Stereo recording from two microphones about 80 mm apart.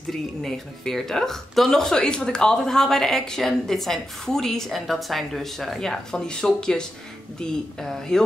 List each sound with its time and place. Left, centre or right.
0.1 s speech: centre